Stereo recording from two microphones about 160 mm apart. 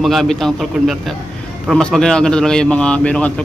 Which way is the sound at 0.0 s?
Centre (ahead or behind).